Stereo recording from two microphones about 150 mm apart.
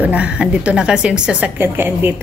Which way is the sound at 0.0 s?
10° right (ahead or behind).